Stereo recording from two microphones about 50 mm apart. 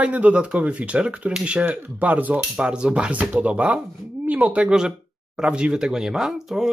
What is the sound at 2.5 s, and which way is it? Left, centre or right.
Speech, centre.